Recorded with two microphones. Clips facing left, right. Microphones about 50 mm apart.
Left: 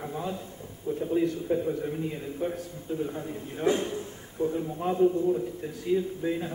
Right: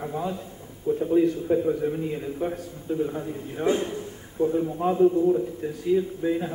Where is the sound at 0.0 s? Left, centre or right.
Centre.